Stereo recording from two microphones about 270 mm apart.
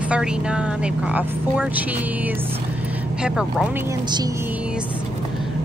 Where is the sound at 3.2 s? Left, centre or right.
Centre.